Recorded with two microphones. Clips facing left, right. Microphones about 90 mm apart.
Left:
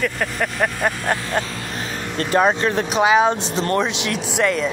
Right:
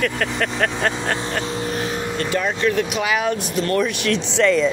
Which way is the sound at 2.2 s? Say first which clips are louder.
Left 5 dB; 45° left (ahead or behind).